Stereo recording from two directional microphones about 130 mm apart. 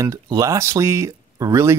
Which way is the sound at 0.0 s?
25° right (ahead or behind).